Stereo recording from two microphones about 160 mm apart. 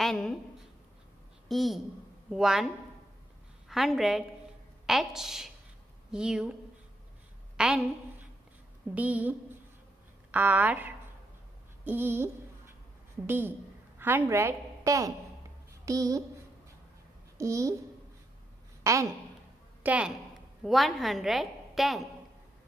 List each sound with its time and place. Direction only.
0.0 s a woman's voice: 5° left (ahead or behind)
1.5 s a woman's voice: centre (ahead or behind)
7.5 s a woman's voice: 5° right (ahead or behind)
10.3 s speech: 10° right (ahead or behind)
13.3 s a woman's voice: 15° right (ahead or behind)
17.4 s a child's voice: 20° right (ahead or behind)
18.9 s a woman's voice: 20° right (ahead or behind); by 22.0 s centre (ahead or behind)